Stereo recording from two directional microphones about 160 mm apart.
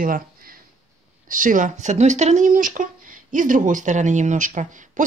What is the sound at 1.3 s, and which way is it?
Speech, 55° right (ahead or behind).